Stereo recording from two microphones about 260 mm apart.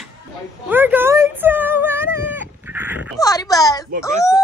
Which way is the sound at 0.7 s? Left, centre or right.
Centre.